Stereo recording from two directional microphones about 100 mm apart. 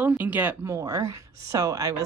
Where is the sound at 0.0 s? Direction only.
20° right (ahead or behind).